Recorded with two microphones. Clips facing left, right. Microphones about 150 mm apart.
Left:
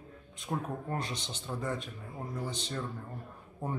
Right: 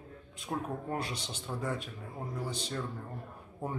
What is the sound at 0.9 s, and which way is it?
Speech, 10° right (ahead or behind).